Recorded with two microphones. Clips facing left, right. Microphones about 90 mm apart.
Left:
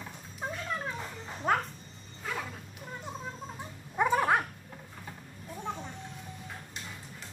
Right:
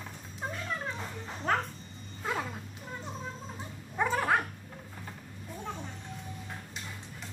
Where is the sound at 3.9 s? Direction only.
15° left (ahead or behind).